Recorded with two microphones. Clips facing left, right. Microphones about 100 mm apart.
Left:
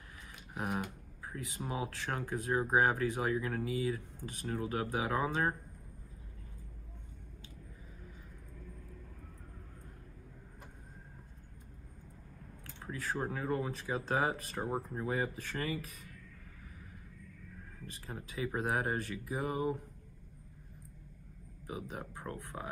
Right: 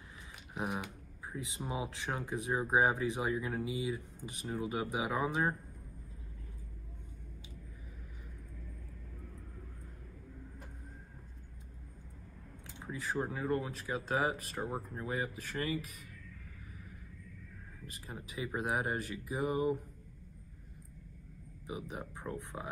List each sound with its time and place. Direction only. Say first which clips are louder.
1.2 s speech: even; 20° right (ahead or behind); by 5.6 s 5° right (ahead or behind)
13.0 s speech: right 1 dB; 5° right (ahead or behind)
18.0 s speech: left 2 dB; 5° right (ahead or behind)
21.6 s speech: even; 15° right (ahead or behind)